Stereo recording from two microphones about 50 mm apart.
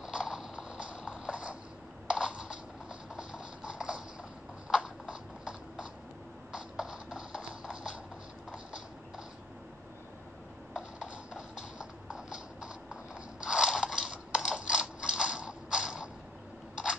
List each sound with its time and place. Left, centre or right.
0.0 s clip-clop: centre
2.0 s a sound: centre
6.5 s music: centre
11.3 s clip-clop: centre